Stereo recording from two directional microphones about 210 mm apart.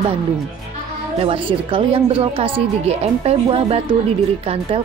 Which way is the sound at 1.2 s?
25° right (ahead or behind).